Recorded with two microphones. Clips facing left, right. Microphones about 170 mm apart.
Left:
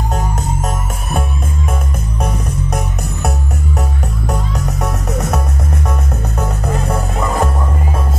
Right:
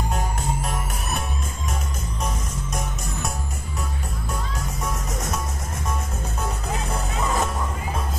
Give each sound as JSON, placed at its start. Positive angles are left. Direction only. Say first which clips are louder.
{"t": 0.1, "sound": "music", "louder": "left 6 dB", "side_deg": 45}
{"t": 1.7, "sound": "music", "louder": "left 8 dB", "side_deg": 60}
{"t": 6.4, "sound": "music", "louder": "left 8 dB", "side_deg": 65}